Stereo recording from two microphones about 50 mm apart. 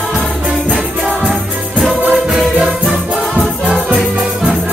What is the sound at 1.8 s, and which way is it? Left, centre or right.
Music, centre.